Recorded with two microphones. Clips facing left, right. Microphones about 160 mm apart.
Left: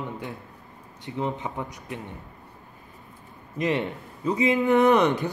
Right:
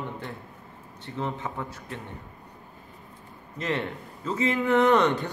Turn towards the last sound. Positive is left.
turn(degrees=15)  # may be behind; listen again after turning